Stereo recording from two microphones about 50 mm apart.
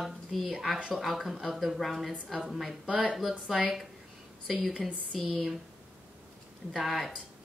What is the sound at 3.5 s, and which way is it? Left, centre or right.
Speech, centre.